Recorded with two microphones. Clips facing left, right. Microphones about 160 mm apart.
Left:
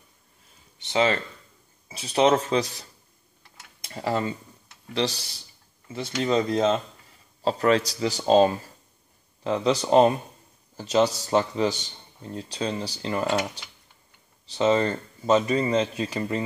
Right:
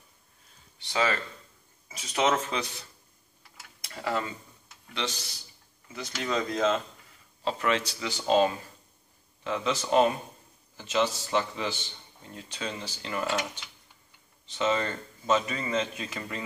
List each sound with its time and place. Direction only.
0.7 s a man's voice: 20° left (ahead or behind)
7.4 s a man's voice: 40° left (ahead or behind)
14.4 s a man's voice: 35° left (ahead or behind)